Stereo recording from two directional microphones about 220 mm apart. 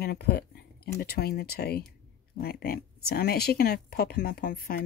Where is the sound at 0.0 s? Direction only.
45° left (ahead or behind).